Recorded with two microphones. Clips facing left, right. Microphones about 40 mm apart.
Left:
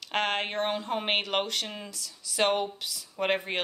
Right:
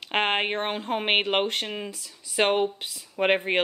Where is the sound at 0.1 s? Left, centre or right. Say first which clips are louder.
Right 4 dB; right.